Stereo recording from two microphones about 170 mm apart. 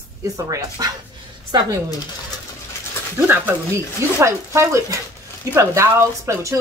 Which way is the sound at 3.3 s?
15° right (ahead or behind).